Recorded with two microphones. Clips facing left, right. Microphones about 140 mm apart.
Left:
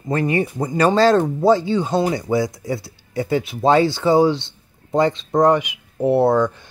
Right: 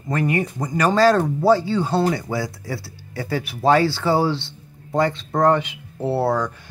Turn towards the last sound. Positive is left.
turn(degrees=20)  # may be behind; listen again after turning